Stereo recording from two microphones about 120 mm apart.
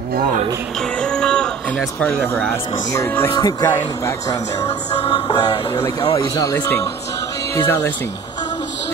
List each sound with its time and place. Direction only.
1.0 s a sound: 5° left (ahead or behind)
2.0 s speech: 20° left (ahead or behind)
3.3 s music: 35° left (ahead or behind)
3.6 s speech: 20° left (ahead or behind)
5.1 s music: 35° left (ahead or behind)
6.4 s speech: 25° left (ahead or behind)